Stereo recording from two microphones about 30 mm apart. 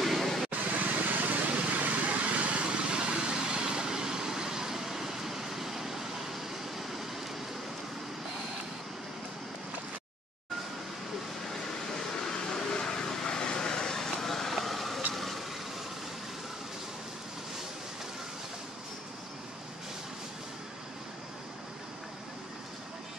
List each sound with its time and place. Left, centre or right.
0.0 s a sound: centre
0.5 s vehicle: right
1.6 s vehicle: right
2.6 s vehicle: right; by 7.1 s centre
11.8 s vehicle: centre
13.9 s vehicle: centre